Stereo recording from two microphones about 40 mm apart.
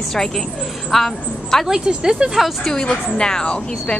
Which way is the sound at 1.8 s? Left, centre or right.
Right.